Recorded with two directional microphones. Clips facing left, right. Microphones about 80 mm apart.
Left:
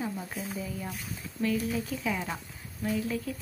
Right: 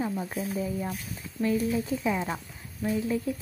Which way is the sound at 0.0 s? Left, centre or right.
Right.